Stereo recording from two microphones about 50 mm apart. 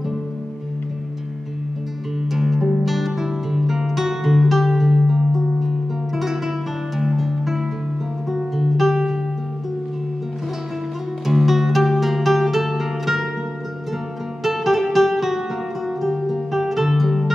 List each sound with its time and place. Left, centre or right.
2.3 s music: centre
11.2 s music: centre
14.4 s music: centre